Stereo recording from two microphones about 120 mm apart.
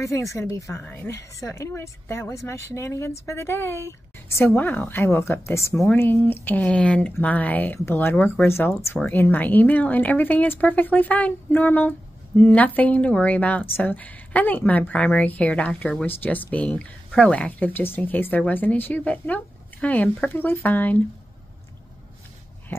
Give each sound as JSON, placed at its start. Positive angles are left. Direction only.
{"t": 0.0, "sound": "a woman's voice", "side_deg": 25}
{"t": 22.7, "sound": "dog", "side_deg": 20}